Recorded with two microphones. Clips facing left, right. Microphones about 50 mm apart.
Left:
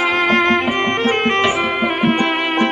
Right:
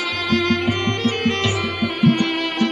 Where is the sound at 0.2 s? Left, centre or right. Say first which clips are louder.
Left 2 dB; left.